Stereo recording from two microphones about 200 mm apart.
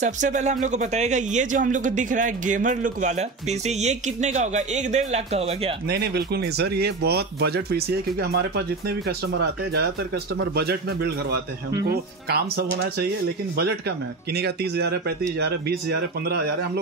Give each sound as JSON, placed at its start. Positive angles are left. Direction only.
{"t": 0.0, "sound": "speech", "side_deg": -35}
{"t": 5.9, "sound": "a man's voice", "side_deg": -55}